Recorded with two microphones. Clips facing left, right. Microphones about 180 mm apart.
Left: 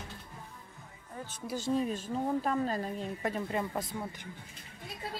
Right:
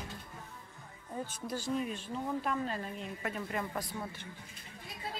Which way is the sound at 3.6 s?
20° left (ahead or behind).